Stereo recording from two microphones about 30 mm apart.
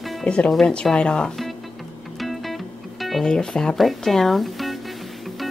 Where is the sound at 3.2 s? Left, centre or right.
Left.